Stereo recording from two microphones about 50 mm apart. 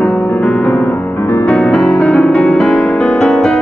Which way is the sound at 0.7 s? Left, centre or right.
Left.